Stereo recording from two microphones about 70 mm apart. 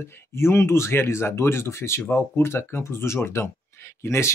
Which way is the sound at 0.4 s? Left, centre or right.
Left.